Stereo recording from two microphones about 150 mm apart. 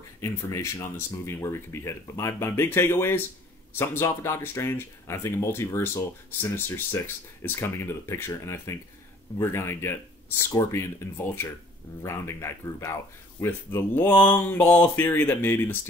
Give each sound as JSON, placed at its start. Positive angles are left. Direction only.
{"t": 0.2, "sound": "speech", "side_deg": 20}